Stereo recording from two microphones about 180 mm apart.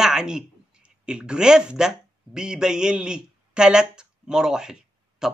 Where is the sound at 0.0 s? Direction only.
5° right (ahead or behind).